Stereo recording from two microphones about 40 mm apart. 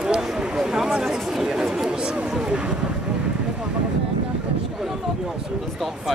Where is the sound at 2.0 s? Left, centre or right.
Right.